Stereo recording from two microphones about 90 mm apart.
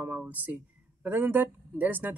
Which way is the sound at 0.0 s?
20° right (ahead or behind).